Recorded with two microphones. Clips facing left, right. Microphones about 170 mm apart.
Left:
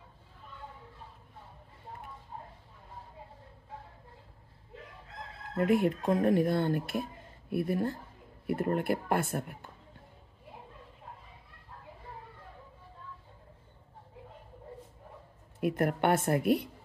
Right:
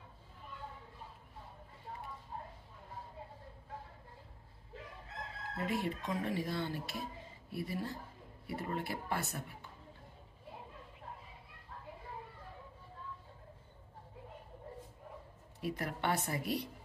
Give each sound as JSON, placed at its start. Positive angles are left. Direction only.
{"t": 5.6, "sound": "speech", "side_deg": 55}
{"t": 15.6, "sound": "speech", "side_deg": 55}